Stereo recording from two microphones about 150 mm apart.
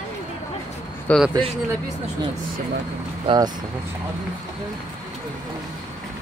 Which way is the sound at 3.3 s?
35° right (ahead or behind).